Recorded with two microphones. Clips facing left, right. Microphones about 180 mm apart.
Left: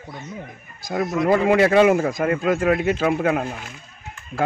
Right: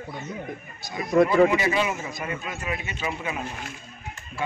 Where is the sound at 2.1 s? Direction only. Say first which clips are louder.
Left 12 dB; 90° left.